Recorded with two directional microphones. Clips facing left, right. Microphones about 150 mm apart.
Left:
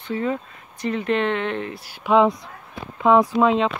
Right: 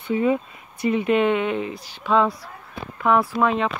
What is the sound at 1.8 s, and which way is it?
Speech, 10° left (ahead or behind).